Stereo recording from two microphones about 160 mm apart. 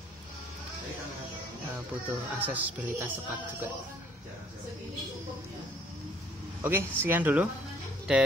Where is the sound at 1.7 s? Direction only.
10° right (ahead or behind).